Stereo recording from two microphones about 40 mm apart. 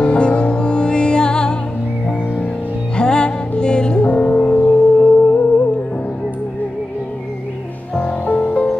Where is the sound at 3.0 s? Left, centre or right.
Left.